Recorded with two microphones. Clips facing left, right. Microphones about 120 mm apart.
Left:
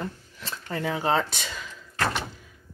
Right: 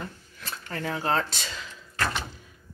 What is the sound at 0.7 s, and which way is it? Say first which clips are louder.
Speech: left 3 dB; 15° left (ahead or behind).